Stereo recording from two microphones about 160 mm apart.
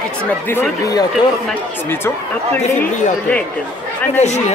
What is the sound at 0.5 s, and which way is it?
A man's voice, 20° left (ahead or behind).